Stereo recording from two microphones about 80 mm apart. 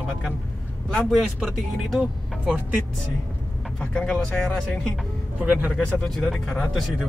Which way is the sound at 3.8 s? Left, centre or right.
Centre.